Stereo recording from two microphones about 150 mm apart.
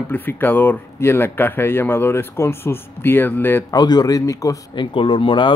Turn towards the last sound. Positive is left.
turn(degrees=35)  # may be behind; listen again after turning